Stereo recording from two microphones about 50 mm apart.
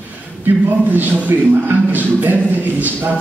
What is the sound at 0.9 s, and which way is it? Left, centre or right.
A man's voice, right.